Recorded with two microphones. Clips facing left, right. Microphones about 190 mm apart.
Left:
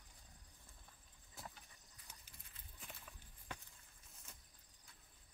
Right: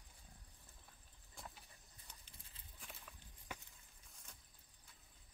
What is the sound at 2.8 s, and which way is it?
Walk, centre (ahead or behind).